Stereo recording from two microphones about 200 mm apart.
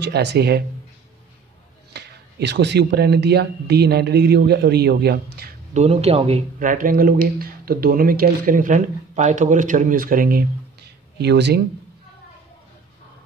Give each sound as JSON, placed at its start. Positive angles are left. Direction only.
{"t": 0.0, "sound": "speech", "side_deg": -60}
{"t": 2.0, "sound": "speech", "side_deg": -55}
{"t": 5.7, "sound": "speech", "side_deg": -35}
{"t": 11.1, "sound": "speech", "side_deg": -55}